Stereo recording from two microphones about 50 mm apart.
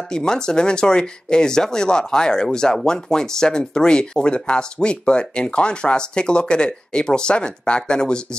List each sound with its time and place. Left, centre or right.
0.1 s speech: centre